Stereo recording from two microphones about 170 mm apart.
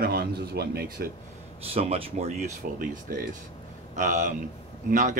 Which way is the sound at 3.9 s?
45° right (ahead or behind).